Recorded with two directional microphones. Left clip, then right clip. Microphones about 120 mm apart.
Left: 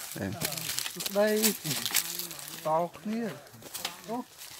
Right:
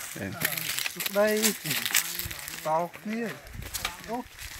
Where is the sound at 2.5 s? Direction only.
5° left (ahead or behind); by 3.9 s 10° right (ahead or behind).